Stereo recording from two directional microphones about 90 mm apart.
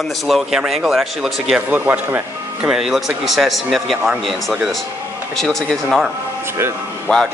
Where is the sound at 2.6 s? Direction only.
5° right (ahead or behind).